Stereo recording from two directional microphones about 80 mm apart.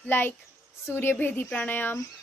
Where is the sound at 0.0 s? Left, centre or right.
Left.